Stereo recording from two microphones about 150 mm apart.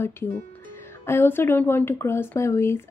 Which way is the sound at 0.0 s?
15° left (ahead or behind).